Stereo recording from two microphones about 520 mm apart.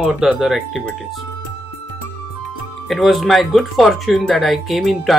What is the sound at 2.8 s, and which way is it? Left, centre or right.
Speech, centre.